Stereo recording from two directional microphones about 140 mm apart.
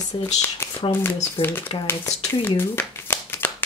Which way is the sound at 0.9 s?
15° left (ahead or behind).